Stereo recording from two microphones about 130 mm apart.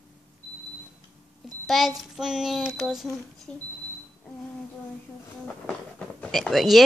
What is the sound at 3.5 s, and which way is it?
Speech, 10° left (ahead or behind).